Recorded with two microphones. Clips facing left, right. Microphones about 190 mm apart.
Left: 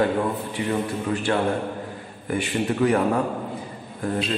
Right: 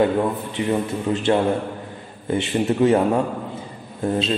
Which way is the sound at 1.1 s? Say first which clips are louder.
Right 4 dB; 25° right (ahead or behind).